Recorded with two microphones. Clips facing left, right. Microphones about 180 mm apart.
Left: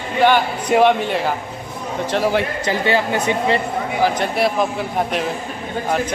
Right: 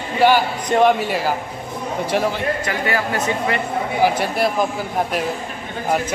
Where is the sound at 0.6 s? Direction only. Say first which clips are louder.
Left 1 dB; 5° left (ahead or behind).